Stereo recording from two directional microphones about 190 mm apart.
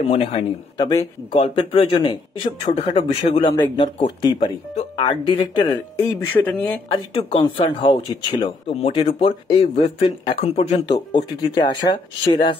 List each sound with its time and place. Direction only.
0.1 s speech: 30° left (ahead or behind)
6.3 s speech: 10° left (ahead or behind)
6.9 s speech: 30° left (ahead or behind)